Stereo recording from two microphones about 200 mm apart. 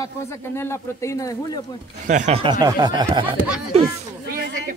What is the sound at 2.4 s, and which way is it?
Speech, 20° right (ahead or behind).